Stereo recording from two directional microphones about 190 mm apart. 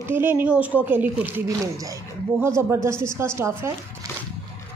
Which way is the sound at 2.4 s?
15° right (ahead or behind).